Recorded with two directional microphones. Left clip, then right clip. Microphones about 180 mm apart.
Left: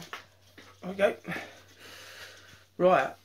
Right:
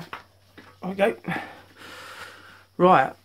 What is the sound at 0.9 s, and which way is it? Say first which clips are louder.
Speech: right 4 dB; 60° right (ahead or behind).